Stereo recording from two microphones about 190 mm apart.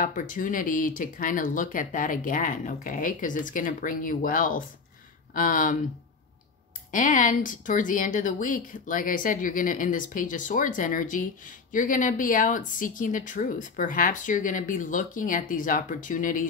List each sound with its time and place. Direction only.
0.0 s speech: 45° left (ahead or behind)
6.9 s speech: 45° left (ahead or behind)